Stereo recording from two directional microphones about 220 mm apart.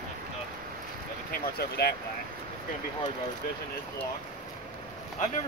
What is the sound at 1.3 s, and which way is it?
Speech, 45° left (ahead or behind).